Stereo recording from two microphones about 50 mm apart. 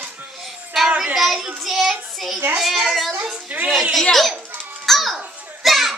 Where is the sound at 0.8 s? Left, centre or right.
Centre.